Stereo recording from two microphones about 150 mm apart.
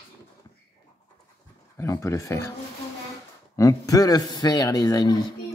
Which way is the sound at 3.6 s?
25° left (ahead or behind).